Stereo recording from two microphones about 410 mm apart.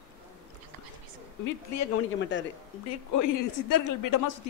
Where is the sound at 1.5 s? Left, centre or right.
Left.